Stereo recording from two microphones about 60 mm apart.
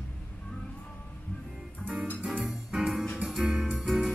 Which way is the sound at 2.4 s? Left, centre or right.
Centre.